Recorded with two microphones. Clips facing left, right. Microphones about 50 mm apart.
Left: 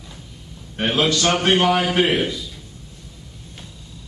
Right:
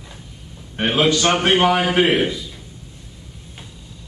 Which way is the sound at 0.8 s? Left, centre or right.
Centre.